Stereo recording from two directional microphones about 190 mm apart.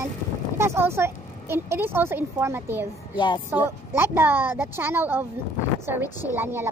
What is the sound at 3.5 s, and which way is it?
A child's voice, 10° right (ahead or behind).